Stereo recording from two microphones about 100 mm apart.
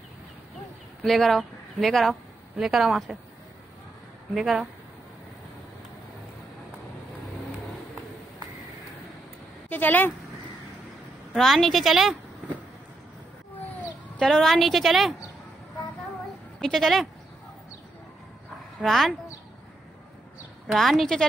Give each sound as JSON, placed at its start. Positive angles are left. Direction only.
{"t": 1.0, "sound": "speech", "side_deg": 5}
{"t": 4.4, "sound": "a woman's voice", "side_deg": 0}
{"t": 9.7, "sound": "speech", "side_deg": 20}
{"t": 11.3, "sound": "a woman's voice", "side_deg": 5}
{"t": 14.1, "sound": "a woman's voice", "side_deg": 5}
{"t": 16.6, "sound": "a woman's voice", "side_deg": 5}
{"t": 18.8, "sound": "a woman's voice", "side_deg": 0}
{"t": 20.6, "sound": "a woman's voice", "side_deg": 0}